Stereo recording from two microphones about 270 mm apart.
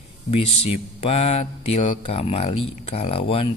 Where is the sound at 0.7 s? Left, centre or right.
Left.